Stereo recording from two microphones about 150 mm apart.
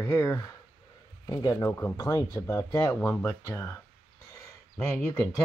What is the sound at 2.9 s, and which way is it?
Speech, 15° left (ahead or behind).